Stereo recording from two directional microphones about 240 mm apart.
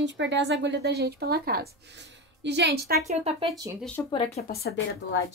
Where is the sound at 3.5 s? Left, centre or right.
Centre.